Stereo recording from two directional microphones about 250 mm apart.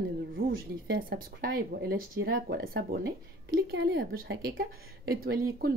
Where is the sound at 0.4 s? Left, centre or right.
Right.